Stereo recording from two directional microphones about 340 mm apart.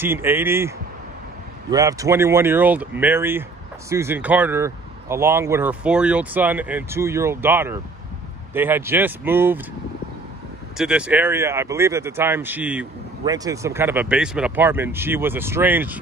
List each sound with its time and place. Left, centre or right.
0.0 s speech: centre
10.8 s speech: centre